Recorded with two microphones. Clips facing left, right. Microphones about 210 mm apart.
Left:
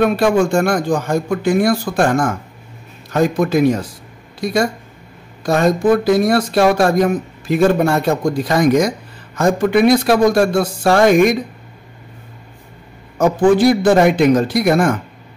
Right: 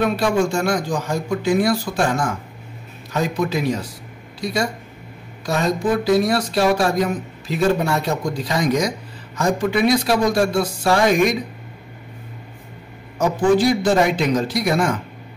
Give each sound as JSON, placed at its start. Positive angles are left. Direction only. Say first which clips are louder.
{"t": 0.0, "sound": "speech", "louder": "left 5 dB", "side_deg": 55}
{"t": 13.2, "sound": "speech", "louder": "left 4 dB", "side_deg": 55}